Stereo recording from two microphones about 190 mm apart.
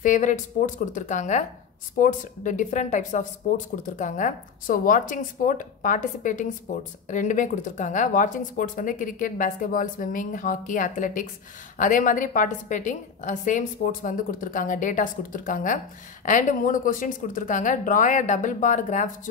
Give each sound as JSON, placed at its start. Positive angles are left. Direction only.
{"t": 0.0, "sound": "speech", "side_deg": 40}